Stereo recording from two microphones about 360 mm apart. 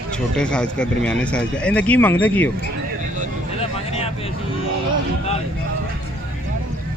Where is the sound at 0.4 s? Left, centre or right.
Centre.